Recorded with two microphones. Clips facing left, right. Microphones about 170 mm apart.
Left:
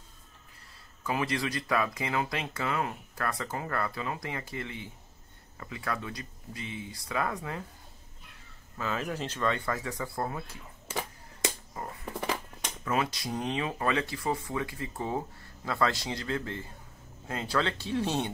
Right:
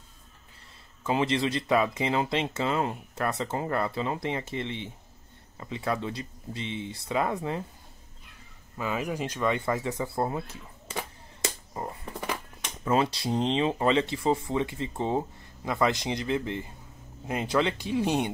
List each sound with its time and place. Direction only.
1.0 s speech: 25° right (ahead or behind)
8.7 s speech: 15° right (ahead or behind)
10.9 s a sound: 5° left (ahead or behind)
12.8 s speech: 30° right (ahead or behind); by 18.3 s 15° right (ahead or behind)